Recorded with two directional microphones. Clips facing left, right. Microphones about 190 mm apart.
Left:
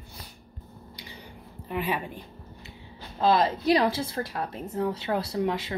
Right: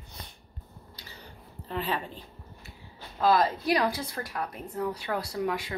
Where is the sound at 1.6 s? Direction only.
10° left (ahead or behind).